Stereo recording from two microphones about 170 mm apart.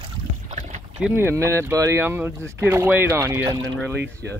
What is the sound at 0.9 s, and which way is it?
Speech, 10° right (ahead or behind).